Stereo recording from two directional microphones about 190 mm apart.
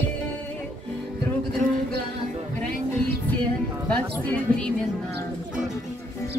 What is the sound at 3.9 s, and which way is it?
Speech, 5° left (ahead or behind).